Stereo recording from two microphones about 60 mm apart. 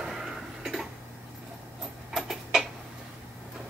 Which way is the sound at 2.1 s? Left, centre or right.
Centre.